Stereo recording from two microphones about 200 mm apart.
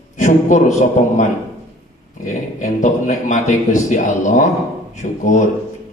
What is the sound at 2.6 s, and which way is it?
A man's voice, 40° left (ahead or behind).